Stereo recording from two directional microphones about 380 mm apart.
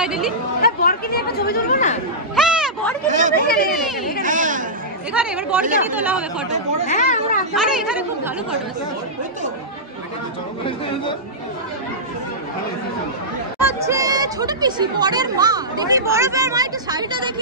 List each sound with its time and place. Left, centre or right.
0.0 s speech: centre
0.6 s speech: left
2.3 s a sound: centre
3.1 s speech: centre
3.3 s speech: left
4.2 s a sound: centre
5.1 s speech: centre
6.9 s speech: centre
7.5 s speech: centre
13.6 s speech: centre